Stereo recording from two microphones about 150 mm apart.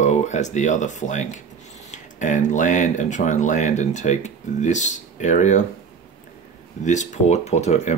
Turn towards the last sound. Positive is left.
turn(degrees=50)  # may be behind; listen again after turning